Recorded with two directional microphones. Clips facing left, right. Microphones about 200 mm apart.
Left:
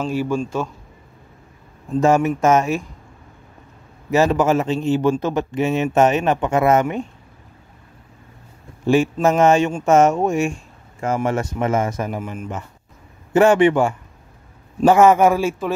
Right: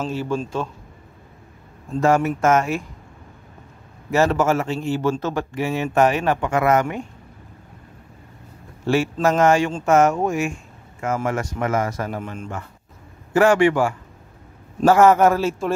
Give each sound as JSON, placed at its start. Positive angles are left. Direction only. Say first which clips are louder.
{"t": 0.1, "sound": "a man's voice", "louder": "left 3 dB", "side_deg": 10}
{"t": 2.0, "sound": "speech", "louder": "left 2 dB", "side_deg": 20}
{"t": 4.1, "sound": "speech", "louder": "left 2 dB", "side_deg": 15}
{"t": 8.8, "sound": "a man's voice", "louder": "left 3 dB", "side_deg": 15}
{"t": 12.2, "sound": "a man's voice", "louder": "left 2 dB", "side_deg": 5}
{"t": 13.3, "sound": "a man's voice", "louder": "left 2 dB", "side_deg": 20}